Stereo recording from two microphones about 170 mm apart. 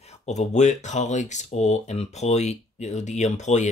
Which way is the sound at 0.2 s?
45° left (ahead or behind).